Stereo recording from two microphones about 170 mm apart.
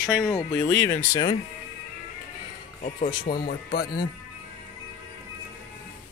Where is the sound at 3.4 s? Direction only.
65° left (ahead or behind).